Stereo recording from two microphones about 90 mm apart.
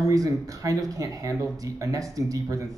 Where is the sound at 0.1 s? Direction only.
40° right (ahead or behind).